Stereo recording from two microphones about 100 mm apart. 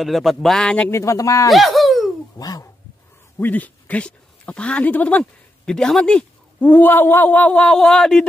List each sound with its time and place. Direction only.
0.0 s speech: centre (ahead or behind)
0.8 s speech: 30° left (ahead or behind)
1.5 s a sound: centre (ahead or behind)
2.3 s speech: 40° left (ahead or behind)
3.3 s speech: 15° left (ahead or behind)
6.6 s speech: 20° left (ahead or behind)